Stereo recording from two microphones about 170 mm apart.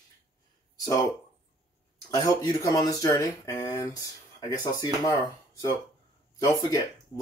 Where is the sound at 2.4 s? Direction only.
20° left (ahead or behind).